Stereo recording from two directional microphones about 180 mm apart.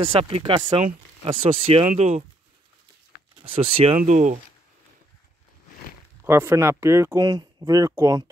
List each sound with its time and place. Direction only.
0.0 s speech: 30° right (ahead or behind)
3.4 s speech: 30° right (ahead or behind)
6.2 s speech: 15° right (ahead or behind)